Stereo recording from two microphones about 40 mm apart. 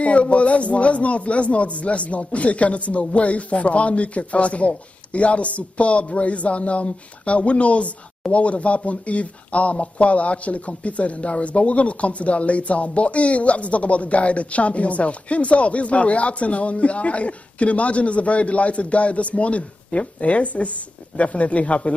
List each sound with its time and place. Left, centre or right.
0.0 s speech: left